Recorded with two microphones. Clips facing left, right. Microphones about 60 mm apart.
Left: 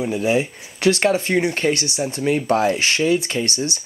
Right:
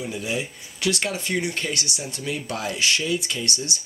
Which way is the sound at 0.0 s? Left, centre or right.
Left.